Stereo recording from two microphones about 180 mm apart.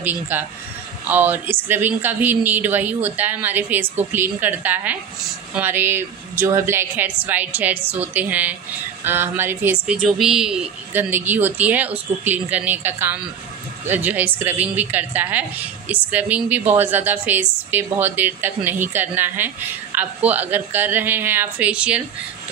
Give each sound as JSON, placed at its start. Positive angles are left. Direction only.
{"t": 0.0, "sound": "a woman's voice", "side_deg": -10}